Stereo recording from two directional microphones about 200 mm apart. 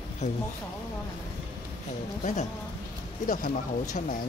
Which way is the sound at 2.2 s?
35° left (ahead or behind).